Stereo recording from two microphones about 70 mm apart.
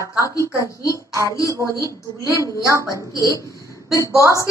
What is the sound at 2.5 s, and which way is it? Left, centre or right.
Speech, right.